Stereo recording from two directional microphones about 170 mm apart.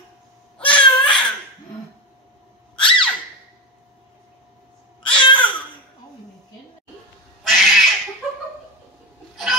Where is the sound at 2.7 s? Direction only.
30° left (ahead or behind).